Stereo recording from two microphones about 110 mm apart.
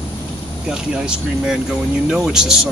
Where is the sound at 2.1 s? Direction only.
5° right (ahead or behind).